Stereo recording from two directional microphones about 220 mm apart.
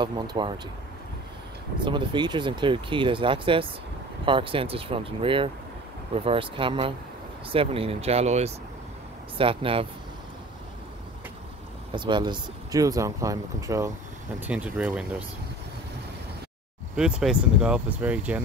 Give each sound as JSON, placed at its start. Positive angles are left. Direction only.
{"t": 0.0, "sound": "speech", "side_deg": -20}
{"t": 1.8, "sound": "speech", "side_deg": -20}
{"t": 11.9, "sound": "speech", "side_deg": -20}
{"t": 16.9, "sound": "speech", "side_deg": -5}